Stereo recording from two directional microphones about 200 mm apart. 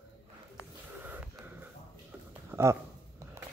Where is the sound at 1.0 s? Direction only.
10° right (ahead or behind).